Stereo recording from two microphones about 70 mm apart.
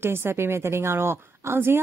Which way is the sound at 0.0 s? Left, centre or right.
Right.